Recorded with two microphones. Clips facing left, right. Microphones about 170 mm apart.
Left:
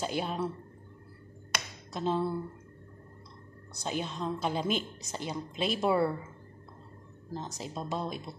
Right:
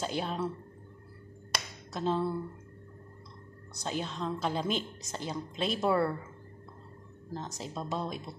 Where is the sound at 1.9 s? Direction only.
5° left (ahead or behind).